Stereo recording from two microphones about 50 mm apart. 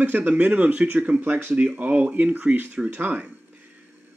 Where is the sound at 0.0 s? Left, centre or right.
Right.